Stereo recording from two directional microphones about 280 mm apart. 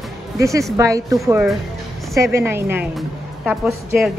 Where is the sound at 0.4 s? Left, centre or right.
Centre.